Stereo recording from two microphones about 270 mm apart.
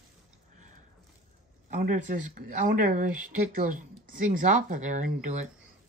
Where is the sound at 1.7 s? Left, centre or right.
Right.